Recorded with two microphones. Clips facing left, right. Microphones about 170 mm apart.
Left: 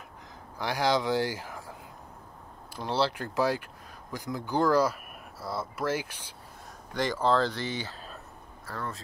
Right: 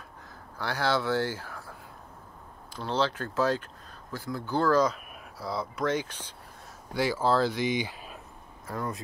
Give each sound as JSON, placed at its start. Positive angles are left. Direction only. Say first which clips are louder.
{"t": 0.6, "sound": "speech", "louder": "left 1 dB", "side_deg": 15}
{"t": 6.9, "sound": "speech", "louder": "even", "side_deg": -10}